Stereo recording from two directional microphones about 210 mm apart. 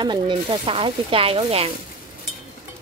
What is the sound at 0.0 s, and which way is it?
Speech, 20° right (ahead or behind).